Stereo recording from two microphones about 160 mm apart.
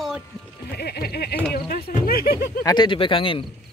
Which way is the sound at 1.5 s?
70° left (ahead or behind).